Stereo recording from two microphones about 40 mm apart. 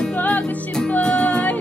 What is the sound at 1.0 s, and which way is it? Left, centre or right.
Music, left.